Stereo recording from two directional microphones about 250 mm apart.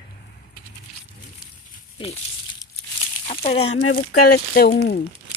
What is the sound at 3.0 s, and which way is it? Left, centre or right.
Crumpling, left.